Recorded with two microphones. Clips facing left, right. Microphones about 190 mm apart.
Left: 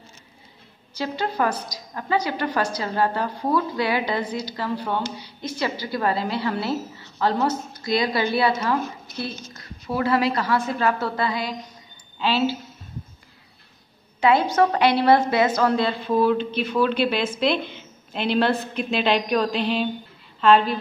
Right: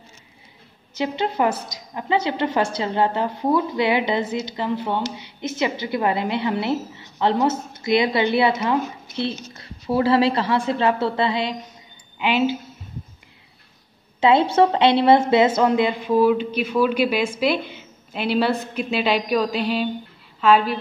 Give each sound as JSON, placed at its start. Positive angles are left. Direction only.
{"t": 0.9, "sound": "a woman's voice", "side_deg": -20}
{"t": 14.2, "sound": "a woman's voice", "side_deg": -25}